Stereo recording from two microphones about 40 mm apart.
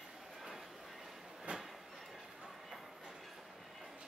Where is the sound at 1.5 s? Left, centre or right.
Right.